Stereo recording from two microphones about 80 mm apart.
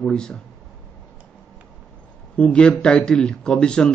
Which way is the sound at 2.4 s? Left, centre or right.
Centre.